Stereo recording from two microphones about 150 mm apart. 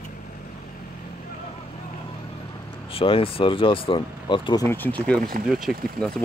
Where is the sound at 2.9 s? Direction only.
35° left (ahead or behind).